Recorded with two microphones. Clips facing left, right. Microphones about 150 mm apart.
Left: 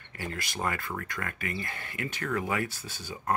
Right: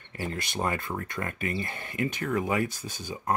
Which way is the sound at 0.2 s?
25° right (ahead or behind).